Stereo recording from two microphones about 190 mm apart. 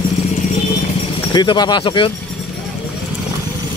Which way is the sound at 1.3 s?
20° left (ahead or behind).